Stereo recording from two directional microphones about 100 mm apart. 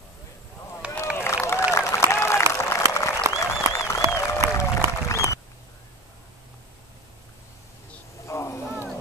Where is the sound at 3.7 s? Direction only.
30° left (ahead or behind).